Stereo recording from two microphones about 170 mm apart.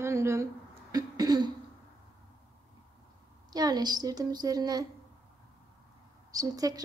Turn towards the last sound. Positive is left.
turn(degrees=-20)  # may be behind; listen again after turning